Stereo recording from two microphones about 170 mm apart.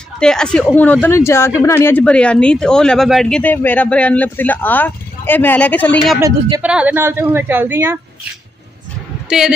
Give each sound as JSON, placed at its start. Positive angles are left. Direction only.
{"t": 0.2, "sound": "speech", "side_deg": 5}
{"t": 6.1, "sound": "a woman's voice", "side_deg": -15}